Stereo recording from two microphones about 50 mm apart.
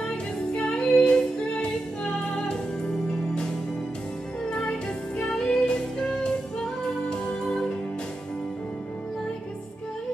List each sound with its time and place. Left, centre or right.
0.6 s female singing: centre
4.5 s music: centre